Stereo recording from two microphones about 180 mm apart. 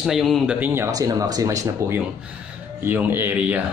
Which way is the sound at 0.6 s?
15° right (ahead or behind).